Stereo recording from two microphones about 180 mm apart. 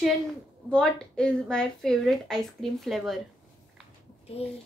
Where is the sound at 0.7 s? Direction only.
5° left (ahead or behind).